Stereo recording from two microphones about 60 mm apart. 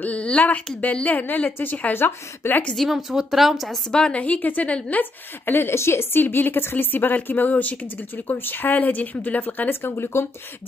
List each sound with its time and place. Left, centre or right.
0.0 s speech: left
2.7 s speech: centre
3.1 s speech: centre
3.9 s a woman's voice: centre
5.5 s a woman's voice: left
6.2 s speech: left